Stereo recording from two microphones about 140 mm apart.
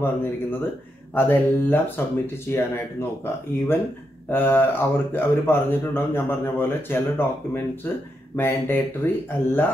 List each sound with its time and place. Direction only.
0.0 s speech: 15° left (ahead or behind)
4.3 s speech: 15° left (ahead or behind)